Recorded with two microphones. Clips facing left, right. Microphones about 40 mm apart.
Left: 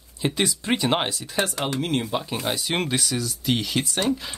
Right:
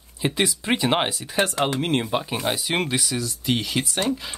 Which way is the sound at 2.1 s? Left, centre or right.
Centre.